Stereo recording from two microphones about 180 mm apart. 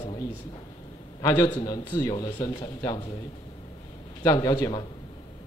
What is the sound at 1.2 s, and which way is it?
A man's voice, 20° left (ahead or behind).